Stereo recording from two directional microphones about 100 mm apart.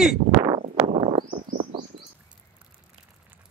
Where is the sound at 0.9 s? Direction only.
70° right (ahead or behind).